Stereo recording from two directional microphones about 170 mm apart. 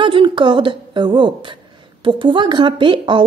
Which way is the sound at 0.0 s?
30° right (ahead or behind).